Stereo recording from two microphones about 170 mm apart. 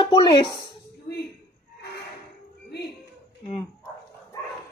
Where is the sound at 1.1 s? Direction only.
70° left (ahead or behind).